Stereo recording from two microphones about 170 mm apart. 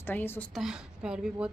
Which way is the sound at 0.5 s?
5° right (ahead or behind).